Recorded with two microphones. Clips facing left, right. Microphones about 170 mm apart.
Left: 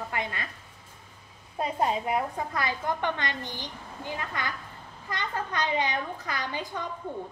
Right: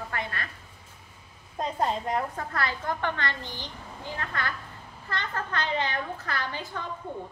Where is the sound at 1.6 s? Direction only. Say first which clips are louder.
Left 1 dB; 10° left (ahead or behind).